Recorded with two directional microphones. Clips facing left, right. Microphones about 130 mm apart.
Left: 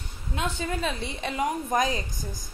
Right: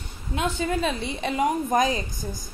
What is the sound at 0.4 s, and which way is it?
A woman's voice, 20° right (ahead or behind).